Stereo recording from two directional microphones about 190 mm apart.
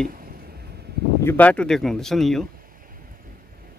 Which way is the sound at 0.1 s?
50° right (ahead or behind).